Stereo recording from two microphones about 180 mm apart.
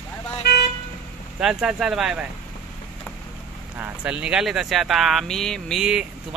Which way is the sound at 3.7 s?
10° right (ahead or behind).